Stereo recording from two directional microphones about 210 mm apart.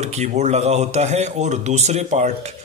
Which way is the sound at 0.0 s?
30° right (ahead or behind).